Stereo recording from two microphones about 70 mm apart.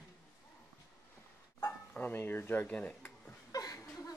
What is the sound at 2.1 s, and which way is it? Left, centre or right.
Speech, left.